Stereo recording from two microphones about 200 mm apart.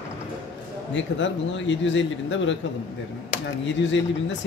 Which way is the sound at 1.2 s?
65° left (ahead or behind).